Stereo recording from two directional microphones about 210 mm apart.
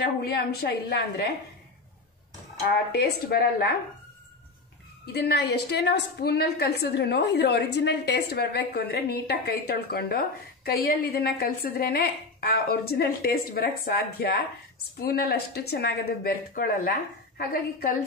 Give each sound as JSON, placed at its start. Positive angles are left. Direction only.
{"t": 0.0, "sound": "a woman's voice", "side_deg": 50}
{"t": 2.9, "sound": "a woman's voice", "side_deg": 50}
{"t": 5.0, "sound": "a woman's voice", "side_deg": 50}